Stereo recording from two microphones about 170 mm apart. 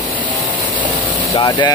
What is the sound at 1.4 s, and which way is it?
Speech, 25° left (ahead or behind).